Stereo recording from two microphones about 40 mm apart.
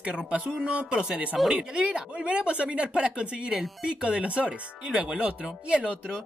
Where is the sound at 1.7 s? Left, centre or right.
Right.